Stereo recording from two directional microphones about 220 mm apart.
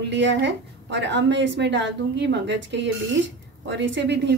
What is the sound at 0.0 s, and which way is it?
A woman's voice, 55° right (ahead or behind).